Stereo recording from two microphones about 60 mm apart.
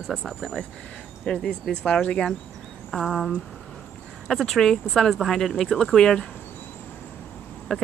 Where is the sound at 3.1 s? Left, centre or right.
Centre.